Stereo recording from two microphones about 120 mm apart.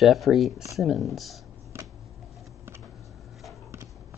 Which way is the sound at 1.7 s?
20° right (ahead or behind).